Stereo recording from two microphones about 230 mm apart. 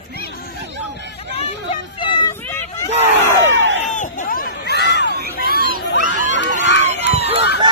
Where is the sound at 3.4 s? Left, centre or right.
Right.